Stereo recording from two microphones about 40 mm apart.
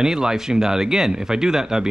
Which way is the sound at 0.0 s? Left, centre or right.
Centre.